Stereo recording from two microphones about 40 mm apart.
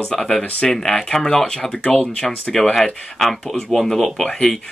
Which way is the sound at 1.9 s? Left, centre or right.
Centre.